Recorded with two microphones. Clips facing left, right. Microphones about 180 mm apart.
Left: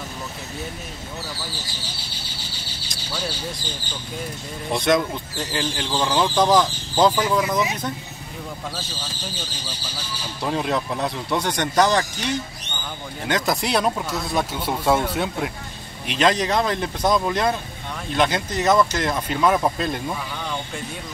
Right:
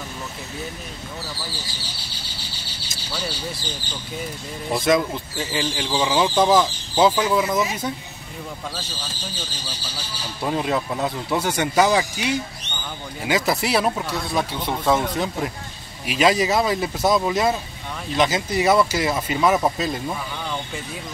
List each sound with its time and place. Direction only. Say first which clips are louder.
4.6 s speech: right 1 dB; centre (ahead or behind)
10.4 s speech: right 1 dB; centre (ahead or behind)